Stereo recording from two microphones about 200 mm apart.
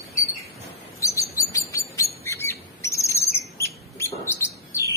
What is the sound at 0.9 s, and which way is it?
Chirp, 15° left (ahead or behind).